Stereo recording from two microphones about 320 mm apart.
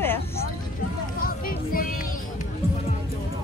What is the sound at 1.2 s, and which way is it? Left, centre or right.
Music, left.